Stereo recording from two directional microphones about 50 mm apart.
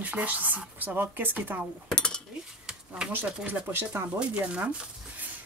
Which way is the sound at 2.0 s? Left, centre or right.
Centre.